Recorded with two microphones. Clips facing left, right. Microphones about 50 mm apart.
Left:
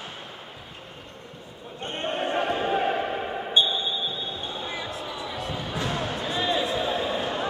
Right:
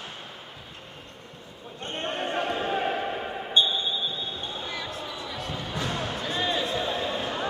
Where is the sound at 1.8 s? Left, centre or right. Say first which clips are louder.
Left 2 dB; centre.